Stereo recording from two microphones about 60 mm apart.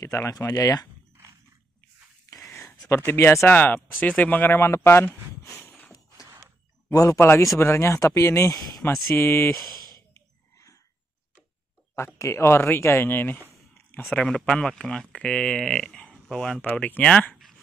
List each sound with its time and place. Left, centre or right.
0.0 s speech: left
3.1 s speech: left
3.4 s speech: left
4.6 s speech: left
5.6 s a sound: left
6.9 s speech: left
7.2 s speech: left
7.5 s speech: left
9.1 s speech: left
10.1 s whispering: left
12.2 s speech: left
14.4 s speech: centre